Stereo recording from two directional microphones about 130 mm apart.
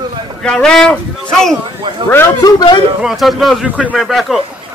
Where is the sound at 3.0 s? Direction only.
Centre (ahead or behind).